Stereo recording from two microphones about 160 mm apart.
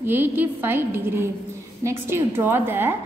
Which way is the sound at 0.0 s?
15° right (ahead or behind).